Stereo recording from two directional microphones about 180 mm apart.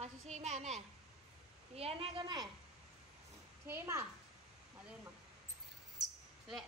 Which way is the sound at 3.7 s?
15° right (ahead or behind).